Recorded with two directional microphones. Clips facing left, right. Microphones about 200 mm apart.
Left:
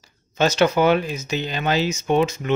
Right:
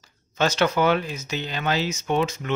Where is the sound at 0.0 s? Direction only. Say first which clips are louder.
Left 3 dB; 15° left (ahead or behind).